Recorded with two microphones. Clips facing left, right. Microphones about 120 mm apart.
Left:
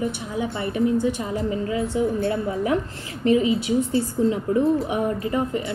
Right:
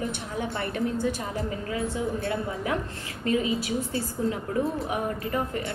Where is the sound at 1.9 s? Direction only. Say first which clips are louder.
Left 6 dB; 30° left (ahead or behind).